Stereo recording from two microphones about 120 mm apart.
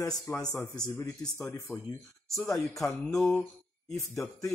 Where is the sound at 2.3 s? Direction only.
Centre (ahead or behind).